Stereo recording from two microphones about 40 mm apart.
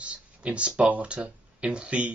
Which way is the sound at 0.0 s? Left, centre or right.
Right.